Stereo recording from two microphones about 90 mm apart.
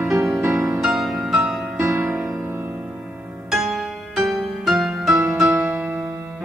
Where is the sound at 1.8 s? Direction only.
30° right (ahead or behind).